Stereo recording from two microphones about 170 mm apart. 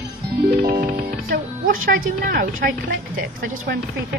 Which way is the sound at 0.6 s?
50° right (ahead or behind).